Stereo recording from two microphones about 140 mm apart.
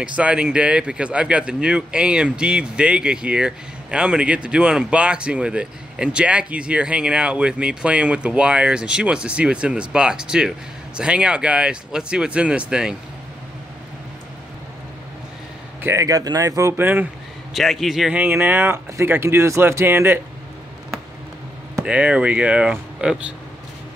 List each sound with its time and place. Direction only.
0.0 s speech: 10° right (ahead or behind)
15.8 s speech: 20° right (ahead or behind)
17.6 s speech: centre (ahead or behind)
21.8 s speech: 10° right (ahead or behind)